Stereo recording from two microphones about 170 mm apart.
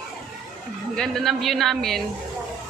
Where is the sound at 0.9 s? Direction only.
5° left (ahead or behind).